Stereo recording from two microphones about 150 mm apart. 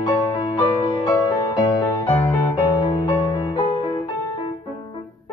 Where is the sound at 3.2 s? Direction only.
30° left (ahead or behind).